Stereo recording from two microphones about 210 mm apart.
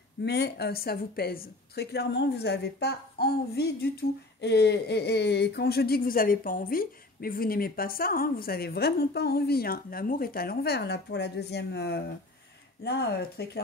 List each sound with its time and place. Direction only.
0.2 s speech: 50° left (ahead or behind)